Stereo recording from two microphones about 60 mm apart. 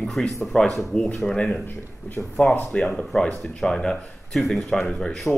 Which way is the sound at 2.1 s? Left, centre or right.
Left.